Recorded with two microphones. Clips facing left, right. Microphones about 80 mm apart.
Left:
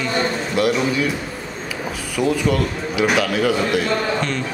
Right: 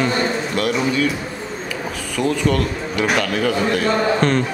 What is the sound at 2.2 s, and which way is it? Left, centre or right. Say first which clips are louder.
A man's voice: even; centre.